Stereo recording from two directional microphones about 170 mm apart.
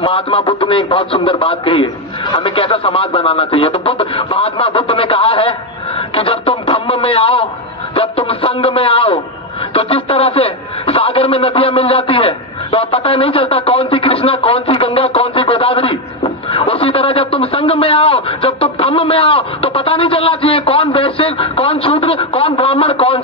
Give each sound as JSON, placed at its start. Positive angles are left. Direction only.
{"t": 0.0, "sound": "a man's voice", "side_deg": 30}